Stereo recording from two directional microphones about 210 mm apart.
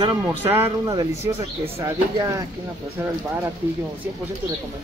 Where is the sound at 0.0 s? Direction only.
20° right (ahead or behind).